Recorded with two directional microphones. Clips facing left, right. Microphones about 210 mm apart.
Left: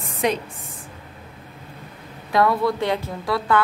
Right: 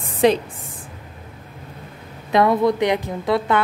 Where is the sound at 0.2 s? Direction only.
30° right (ahead or behind).